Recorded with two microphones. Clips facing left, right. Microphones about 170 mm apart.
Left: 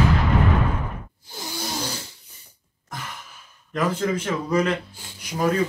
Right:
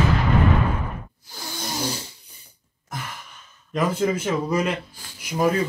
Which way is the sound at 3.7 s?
10° right (ahead or behind).